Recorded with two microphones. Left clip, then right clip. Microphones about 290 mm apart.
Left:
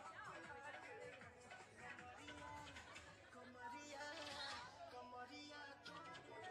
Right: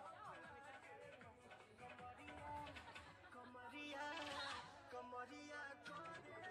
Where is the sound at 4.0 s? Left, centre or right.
Right.